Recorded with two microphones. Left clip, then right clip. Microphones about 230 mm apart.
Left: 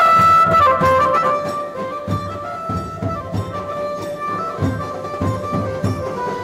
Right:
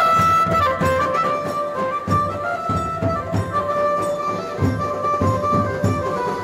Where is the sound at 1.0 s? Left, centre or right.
Centre.